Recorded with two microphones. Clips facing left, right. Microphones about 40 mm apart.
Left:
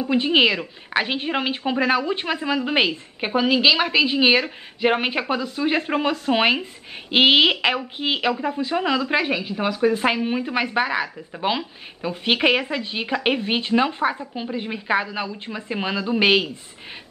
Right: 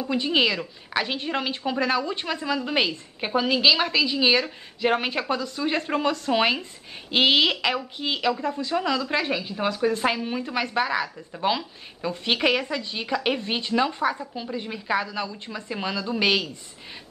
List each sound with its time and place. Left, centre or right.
0.0 s a woman's voice: left
3.9 s speech: left